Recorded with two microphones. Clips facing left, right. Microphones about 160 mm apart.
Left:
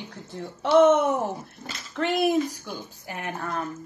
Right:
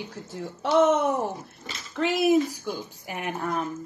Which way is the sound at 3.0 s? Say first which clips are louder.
Right 3 dB; 15° right (ahead or behind).